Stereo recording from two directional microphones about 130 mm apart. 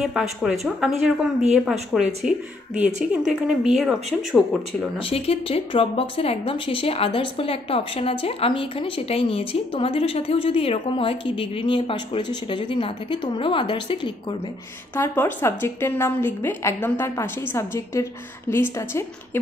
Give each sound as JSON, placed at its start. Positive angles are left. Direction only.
{"t": 0.0, "sound": "speech", "side_deg": 0}
{"t": 4.9, "sound": "speech", "side_deg": 50}
{"t": 15.0, "sound": "a woman's voice", "side_deg": 20}